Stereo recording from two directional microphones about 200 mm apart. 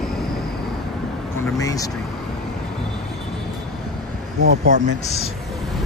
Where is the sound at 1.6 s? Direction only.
15° left (ahead or behind).